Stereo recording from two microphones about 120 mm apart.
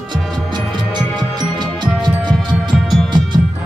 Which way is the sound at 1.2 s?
35° right (ahead or behind).